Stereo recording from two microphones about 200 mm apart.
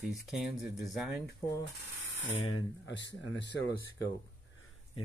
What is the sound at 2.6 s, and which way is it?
Speech, 65° left (ahead or behind).